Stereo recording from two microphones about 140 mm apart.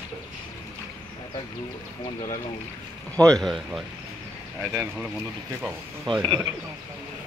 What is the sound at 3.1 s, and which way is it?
Speech, 5° left (ahead or behind).